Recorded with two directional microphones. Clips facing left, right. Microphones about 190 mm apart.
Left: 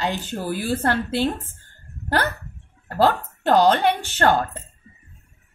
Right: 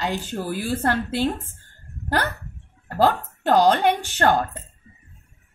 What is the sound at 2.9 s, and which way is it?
Speech, 10° right (ahead or behind).